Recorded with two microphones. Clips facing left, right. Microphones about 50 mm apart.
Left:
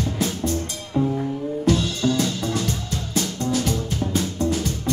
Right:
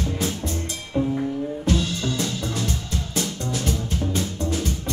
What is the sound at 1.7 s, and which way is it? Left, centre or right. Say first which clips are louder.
Music: left 4 dB; left.